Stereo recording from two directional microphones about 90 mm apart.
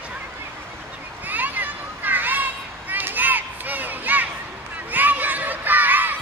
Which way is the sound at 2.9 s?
20° right (ahead or behind).